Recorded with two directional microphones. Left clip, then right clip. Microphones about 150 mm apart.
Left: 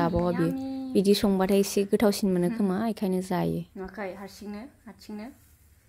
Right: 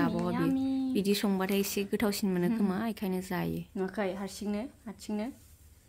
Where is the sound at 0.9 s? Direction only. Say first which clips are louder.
Left 11 dB; 30° left (ahead or behind).